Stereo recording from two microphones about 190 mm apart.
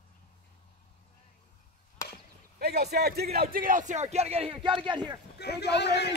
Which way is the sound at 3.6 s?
40° right (ahead or behind).